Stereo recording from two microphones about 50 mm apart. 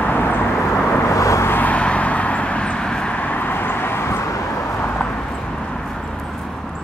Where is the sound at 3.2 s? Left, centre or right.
Left.